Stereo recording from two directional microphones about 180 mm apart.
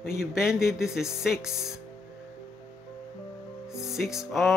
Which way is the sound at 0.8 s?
5° right (ahead or behind).